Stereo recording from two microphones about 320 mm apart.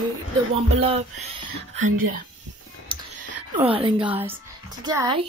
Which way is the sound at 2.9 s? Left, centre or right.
Centre.